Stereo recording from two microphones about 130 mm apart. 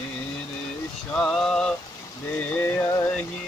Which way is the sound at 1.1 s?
5° left (ahead or behind).